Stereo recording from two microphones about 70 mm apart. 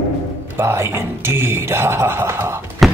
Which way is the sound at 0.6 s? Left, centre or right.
Right.